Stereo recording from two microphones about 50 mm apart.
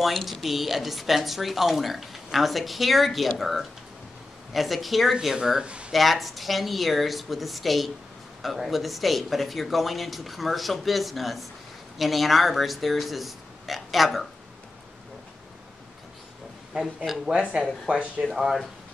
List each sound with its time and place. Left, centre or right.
0.0 s speech: centre
5.9 s speech: centre
16.8 s speech: centre
17.3 s speech: centre
18.2 s speech: centre